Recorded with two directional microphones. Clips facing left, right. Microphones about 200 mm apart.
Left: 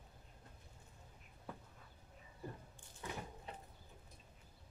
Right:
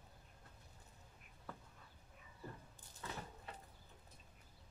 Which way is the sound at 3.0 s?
15° left (ahead or behind).